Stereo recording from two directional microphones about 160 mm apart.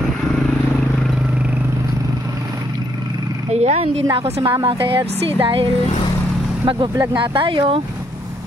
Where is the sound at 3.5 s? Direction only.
45° right (ahead or behind).